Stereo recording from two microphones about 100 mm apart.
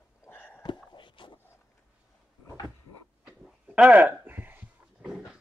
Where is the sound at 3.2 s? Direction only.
10° right (ahead or behind).